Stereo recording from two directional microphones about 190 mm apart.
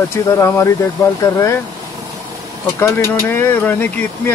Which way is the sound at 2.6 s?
15° left (ahead or behind).